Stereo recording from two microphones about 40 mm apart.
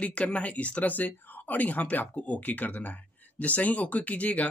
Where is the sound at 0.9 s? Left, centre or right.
Left.